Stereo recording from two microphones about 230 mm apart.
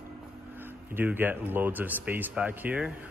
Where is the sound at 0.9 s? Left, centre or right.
Centre.